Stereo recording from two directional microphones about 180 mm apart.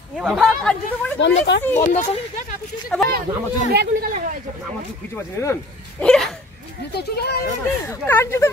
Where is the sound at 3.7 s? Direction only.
65° right (ahead or behind).